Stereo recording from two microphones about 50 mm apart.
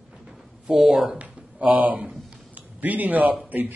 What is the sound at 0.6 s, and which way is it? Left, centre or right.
Speech, centre.